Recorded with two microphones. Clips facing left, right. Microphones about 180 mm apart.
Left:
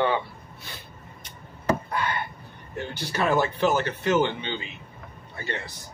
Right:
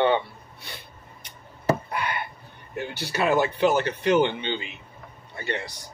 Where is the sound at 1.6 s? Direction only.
15° right (ahead or behind).